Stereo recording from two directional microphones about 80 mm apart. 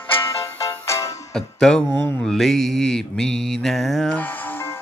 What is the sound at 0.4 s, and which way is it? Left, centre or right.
Music, left.